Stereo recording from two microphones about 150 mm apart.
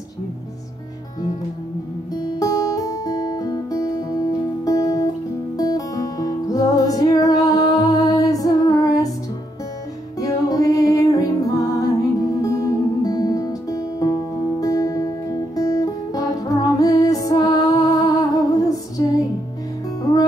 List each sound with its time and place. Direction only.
2.1 s guitar: 25° left (ahead or behind)
4.6 s music: 25° left (ahead or behind)
10.2 s music: 25° left (ahead or behind)
20.1 s music: 25° left (ahead or behind)